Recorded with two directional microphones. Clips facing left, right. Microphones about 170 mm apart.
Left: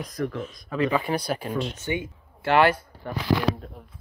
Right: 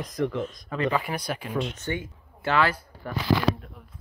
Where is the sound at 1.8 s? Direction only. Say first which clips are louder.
Left 2 dB; 15° left (ahead or behind).